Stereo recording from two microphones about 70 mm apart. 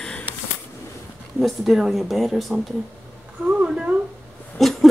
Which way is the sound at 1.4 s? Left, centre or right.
Centre.